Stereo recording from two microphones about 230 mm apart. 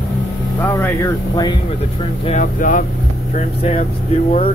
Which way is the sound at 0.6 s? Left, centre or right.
Centre.